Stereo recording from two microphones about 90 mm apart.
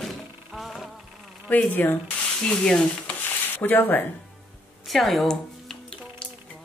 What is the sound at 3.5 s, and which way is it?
Speech, 20° left (ahead or behind).